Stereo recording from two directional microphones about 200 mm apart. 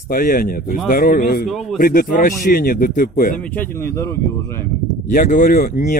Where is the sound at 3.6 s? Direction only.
15° left (ahead or behind).